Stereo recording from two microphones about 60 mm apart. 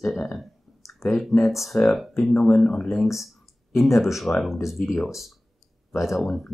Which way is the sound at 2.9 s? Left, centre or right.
Centre.